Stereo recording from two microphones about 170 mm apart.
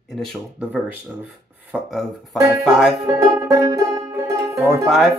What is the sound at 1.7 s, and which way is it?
Speech, centre (ahead or behind).